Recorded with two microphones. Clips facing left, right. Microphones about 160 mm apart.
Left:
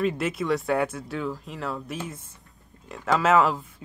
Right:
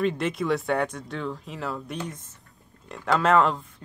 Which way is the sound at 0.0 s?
5° left (ahead or behind).